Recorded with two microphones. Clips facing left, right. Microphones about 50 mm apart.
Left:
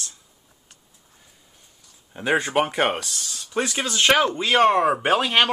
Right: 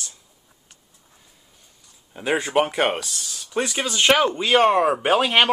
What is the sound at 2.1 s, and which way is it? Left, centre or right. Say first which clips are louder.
Speech: even; centre.